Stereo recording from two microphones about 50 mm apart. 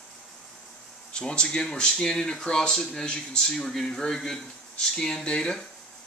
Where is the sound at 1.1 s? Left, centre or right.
Centre.